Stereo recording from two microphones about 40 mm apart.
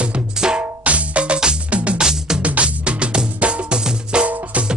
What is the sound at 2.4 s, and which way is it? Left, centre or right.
Music, right.